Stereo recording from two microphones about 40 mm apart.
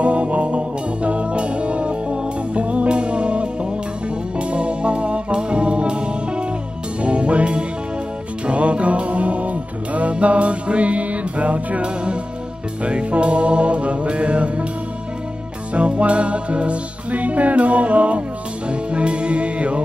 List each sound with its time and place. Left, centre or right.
0.0 s music: right
15.7 s music: right